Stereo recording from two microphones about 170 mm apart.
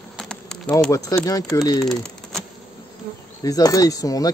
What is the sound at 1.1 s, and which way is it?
Speech, 20° left (ahead or behind).